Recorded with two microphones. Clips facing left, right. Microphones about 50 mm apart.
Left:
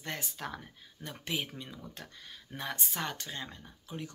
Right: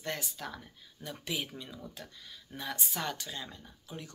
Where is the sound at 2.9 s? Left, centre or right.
Left.